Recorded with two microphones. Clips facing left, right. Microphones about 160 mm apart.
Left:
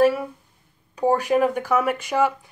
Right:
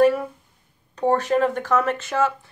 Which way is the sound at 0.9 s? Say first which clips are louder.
Even; 10° left (ahead or behind).